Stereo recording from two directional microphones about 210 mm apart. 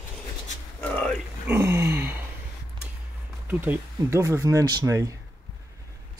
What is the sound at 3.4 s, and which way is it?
Speech, 10° right (ahead or behind).